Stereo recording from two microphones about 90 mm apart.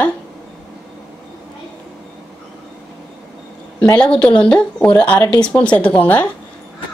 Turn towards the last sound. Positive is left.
turn(degrees=20)  # may be behind; listen again after turning